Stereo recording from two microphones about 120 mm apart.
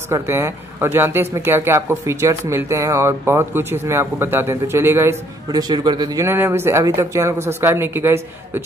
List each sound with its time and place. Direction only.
0.1 s speech: 25° right (ahead or behind)
5.5 s speech: 35° right (ahead or behind)
6.2 s speech: 20° right (ahead or behind)